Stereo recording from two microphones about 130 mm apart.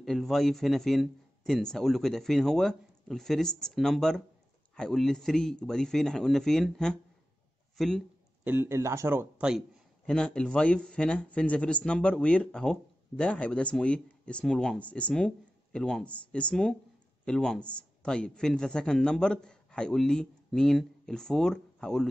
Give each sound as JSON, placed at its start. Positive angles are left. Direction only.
{"t": 0.0, "sound": "speech", "side_deg": 0}
{"t": 8.5, "sound": "speech", "side_deg": -15}
{"t": 10.0, "sound": "a man's voice", "side_deg": 5}